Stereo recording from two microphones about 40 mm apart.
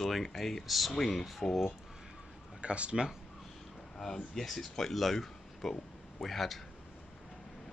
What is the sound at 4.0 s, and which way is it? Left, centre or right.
Speech, centre.